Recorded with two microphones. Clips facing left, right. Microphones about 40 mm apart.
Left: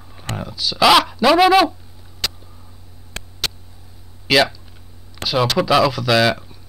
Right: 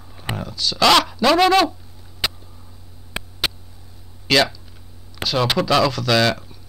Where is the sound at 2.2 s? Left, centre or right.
Centre.